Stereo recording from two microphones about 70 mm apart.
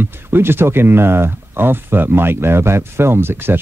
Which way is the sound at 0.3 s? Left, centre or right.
Right.